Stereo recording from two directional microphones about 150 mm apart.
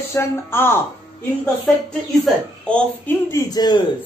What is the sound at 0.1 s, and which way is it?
Speech, 15° left (ahead or behind).